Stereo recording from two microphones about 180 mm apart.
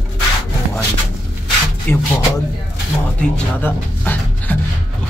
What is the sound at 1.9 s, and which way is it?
Speech, 10° left (ahead or behind).